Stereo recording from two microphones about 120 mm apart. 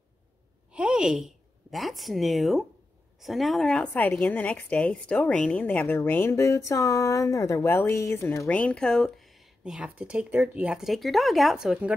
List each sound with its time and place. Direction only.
0.7 s a woman's voice: 10° right (ahead or behind)
9.7 s speech: 10° right (ahead or behind)